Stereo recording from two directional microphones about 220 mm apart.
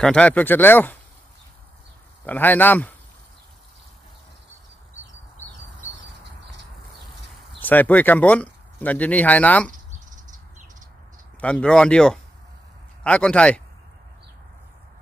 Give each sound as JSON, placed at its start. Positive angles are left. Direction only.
{"t": 0.0, "sound": "speech", "side_deg": 5}
{"t": 2.2, "sound": "speech", "side_deg": 10}
{"t": 7.6, "sound": "speech", "side_deg": 10}
{"t": 9.7, "sound": "cricket", "side_deg": -35}
{"t": 11.4, "sound": "speech", "side_deg": 5}